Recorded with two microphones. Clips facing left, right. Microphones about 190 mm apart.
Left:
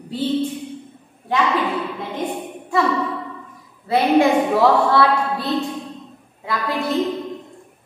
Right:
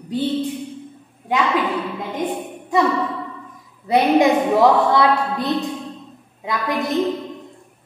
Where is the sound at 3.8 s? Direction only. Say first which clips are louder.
Right 1 dB; 20° right (ahead or behind).